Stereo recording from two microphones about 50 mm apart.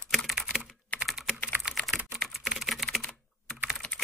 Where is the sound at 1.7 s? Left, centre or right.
Centre.